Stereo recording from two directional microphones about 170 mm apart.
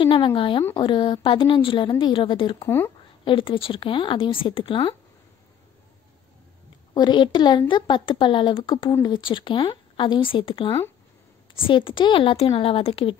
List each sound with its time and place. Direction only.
0.0 s a woman's voice: 30° left (ahead or behind)
6.9 s a woman's voice: 25° left (ahead or behind)